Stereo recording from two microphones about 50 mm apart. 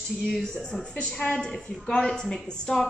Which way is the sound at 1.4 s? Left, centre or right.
Centre.